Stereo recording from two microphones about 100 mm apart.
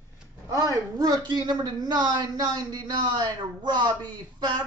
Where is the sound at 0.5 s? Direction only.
40° right (ahead or behind).